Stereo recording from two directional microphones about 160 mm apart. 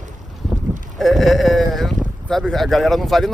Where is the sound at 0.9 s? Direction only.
Centre (ahead or behind).